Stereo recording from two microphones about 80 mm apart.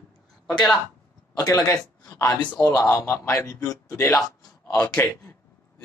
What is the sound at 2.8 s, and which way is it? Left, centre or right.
A man's voice, left.